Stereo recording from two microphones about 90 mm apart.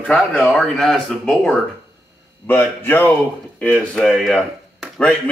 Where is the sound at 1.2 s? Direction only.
20° left (ahead or behind).